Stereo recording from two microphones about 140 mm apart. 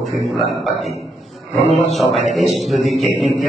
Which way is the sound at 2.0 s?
Centre (ahead or behind).